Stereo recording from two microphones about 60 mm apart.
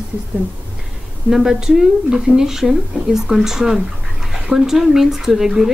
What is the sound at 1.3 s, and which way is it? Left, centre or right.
Speech, centre.